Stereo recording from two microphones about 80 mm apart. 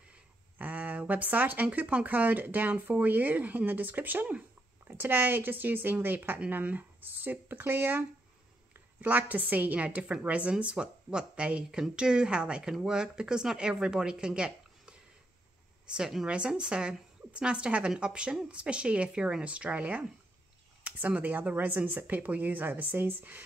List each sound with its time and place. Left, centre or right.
0.1 s speech: centre
9.0 s a woman's voice: centre